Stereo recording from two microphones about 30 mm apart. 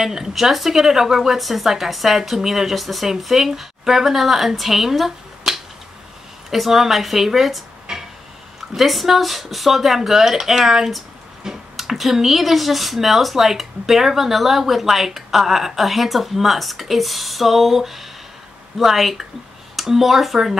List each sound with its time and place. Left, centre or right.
0.0 s a woman's voice: centre
0.3 s a woman's voice: centre
7.9 s a sound: centre
8.7 s a woman's voice: centre